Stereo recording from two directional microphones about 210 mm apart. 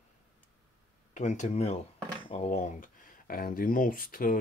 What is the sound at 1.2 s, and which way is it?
Speech, 35° left (ahead or behind).